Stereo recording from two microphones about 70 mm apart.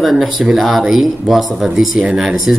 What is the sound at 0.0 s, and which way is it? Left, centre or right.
Speech, centre.